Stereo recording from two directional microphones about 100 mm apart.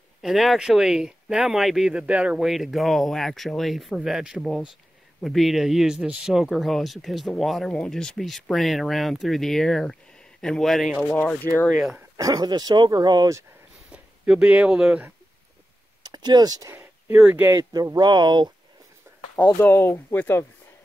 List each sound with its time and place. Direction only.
0.2 s speech: centre (ahead or behind)
11.0 s speech: 10° left (ahead or behind)
12.2 s speech: 40° right (ahead or behind)
13.8 s speech: 10° right (ahead or behind)
16.0 s speech: 45° right (ahead or behind)
16.7 s a sound: 20° right (ahead or behind)
17.6 s speech: 40° right (ahead or behind)
19.4 s speech: 10° left (ahead or behind)
19.7 s speech: 30° left (ahead or behind)